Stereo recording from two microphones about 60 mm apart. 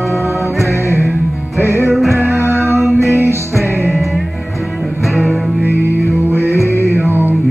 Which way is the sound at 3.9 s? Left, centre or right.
Centre.